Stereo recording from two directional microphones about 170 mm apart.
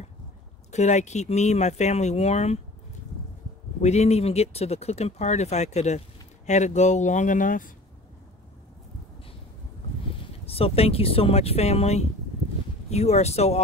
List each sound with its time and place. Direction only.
0.7 s speech: 40° left (ahead or behind)
3.8 s speech: 40° left (ahead or behind)
10.5 s speech: 35° left (ahead or behind)